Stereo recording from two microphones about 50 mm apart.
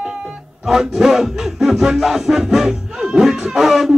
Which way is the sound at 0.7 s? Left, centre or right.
Centre.